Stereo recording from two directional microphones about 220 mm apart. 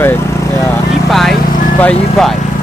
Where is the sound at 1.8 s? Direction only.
5° left (ahead or behind).